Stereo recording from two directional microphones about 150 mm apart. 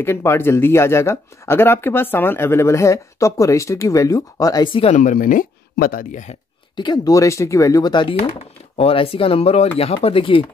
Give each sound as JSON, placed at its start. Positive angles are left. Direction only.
{"t": 0.0, "sound": "speech", "side_deg": 15}
{"t": 4.9, "sound": "speech", "side_deg": 60}
{"t": 6.8, "sound": "speech", "side_deg": 25}